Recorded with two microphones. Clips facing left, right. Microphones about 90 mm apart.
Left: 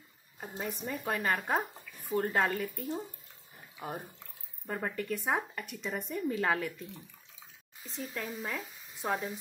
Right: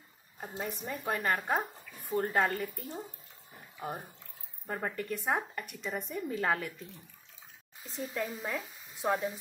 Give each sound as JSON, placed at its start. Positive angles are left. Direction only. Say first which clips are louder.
{"t": 0.4, "sound": "speech", "louder": "even", "side_deg": 0}
{"t": 4.6, "sound": "speech", "louder": "left 1 dB", "side_deg": -5}
{"t": 8.1, "sound": "speech", "louder": "right 2 dB", "side_deg": -5}